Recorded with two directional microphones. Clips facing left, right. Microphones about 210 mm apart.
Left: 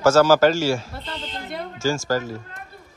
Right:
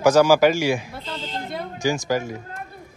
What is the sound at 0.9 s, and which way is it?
Speech, 5° right (ahead or behind).